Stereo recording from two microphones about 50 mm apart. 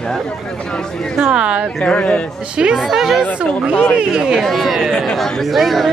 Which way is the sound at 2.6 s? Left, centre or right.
Centre.